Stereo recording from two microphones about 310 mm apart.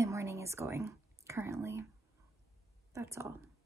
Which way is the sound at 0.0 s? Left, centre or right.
Centre.